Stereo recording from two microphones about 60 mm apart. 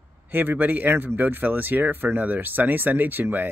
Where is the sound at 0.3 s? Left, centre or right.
Right.